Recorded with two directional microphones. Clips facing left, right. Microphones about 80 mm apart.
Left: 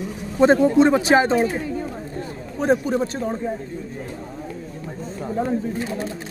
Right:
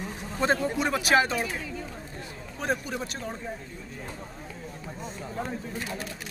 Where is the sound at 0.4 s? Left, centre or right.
Left.